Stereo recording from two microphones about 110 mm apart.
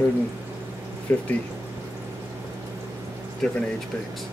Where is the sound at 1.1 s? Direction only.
15° left (ahead or behind).